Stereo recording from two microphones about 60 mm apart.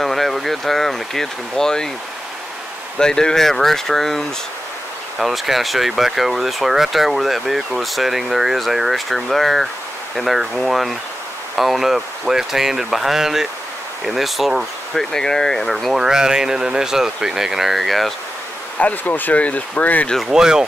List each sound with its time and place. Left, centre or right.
0.0 s speech: centre
3.0 s speech: centre
5.2 s speech: centre
15.1 s speech: centre
18.8 s speech: left
20.2 s speech: centre